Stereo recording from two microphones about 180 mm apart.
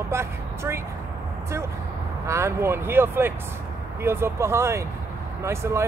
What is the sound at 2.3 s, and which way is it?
Speech, 15° right (ahead or behind).